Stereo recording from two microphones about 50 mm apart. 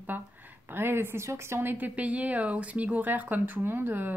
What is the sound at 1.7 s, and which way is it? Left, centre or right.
Speech, right.